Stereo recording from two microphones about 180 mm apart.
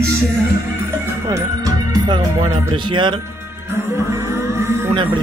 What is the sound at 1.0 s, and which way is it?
Music, 15° right (ahead or behind).